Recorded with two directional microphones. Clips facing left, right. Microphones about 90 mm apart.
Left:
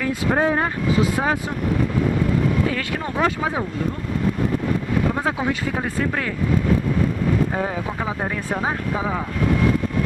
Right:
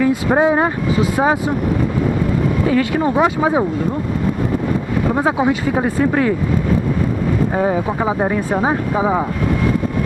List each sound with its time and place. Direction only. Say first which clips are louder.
0.0 s speech: right 6 dB; 15° right (ahead or behind)
2.6 s speech: right 8 dB; 15° right (ahead or behind)
5.1 s speech: right 7 dB; 15° right (ahead or behind)